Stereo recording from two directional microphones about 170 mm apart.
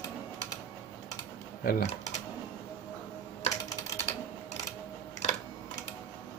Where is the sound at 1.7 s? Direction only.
60° left (ahead or behind).